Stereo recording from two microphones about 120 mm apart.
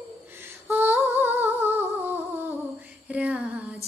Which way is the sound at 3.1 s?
10° right (ahead or behind).